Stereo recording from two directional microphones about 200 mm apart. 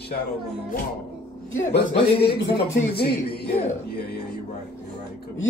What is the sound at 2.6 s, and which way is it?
Speech, 50° left (ahead or behind).